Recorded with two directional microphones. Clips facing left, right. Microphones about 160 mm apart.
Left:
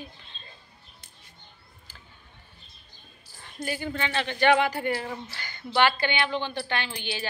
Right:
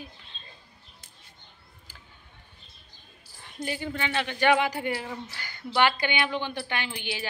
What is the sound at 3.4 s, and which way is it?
A woman's voice, 15° right (ahead or behind).